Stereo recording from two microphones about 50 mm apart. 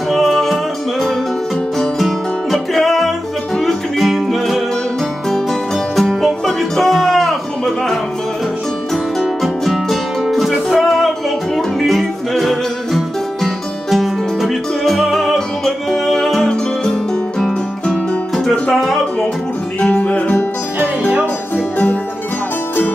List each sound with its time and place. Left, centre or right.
0.1 s music: centre
2.0 s music: centre
19.9 s music: left
21.5 s music: left